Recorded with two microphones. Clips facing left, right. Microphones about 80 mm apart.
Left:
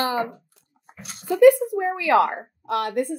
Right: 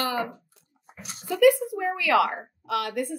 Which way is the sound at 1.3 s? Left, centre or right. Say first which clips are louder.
Left 5 dB; left.